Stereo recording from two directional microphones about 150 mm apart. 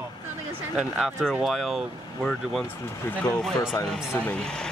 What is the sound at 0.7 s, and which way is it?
Speech, centre (ahead or behind).